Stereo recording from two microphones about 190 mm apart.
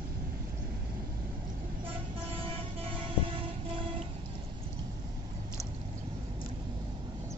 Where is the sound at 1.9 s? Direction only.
30° right (ahead or behind).